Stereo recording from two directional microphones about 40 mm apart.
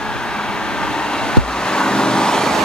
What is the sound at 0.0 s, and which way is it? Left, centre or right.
Vehicle, centre.